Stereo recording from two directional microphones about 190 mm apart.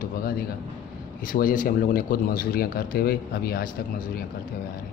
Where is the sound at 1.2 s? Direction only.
45° left (ahead or behind).